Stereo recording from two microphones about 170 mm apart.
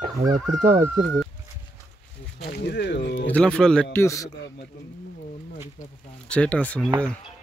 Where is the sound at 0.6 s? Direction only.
45° right (ahead or behind).